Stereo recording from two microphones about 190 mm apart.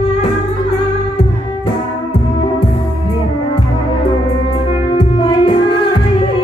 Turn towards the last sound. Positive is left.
turn(degrees=25)  # may be behind; listen again after turning